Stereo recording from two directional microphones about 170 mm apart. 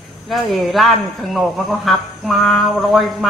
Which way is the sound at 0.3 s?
Centre (ahead or behind).